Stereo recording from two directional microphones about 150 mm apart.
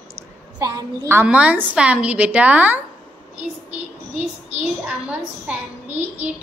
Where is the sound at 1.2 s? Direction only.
10° right (ahead or behind).